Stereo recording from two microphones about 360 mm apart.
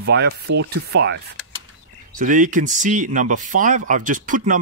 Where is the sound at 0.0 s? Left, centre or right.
Right.